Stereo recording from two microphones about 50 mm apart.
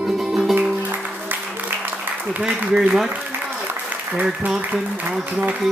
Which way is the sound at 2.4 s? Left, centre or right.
Centre.